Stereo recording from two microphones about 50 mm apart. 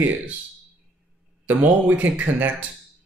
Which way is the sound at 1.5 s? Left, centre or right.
Right.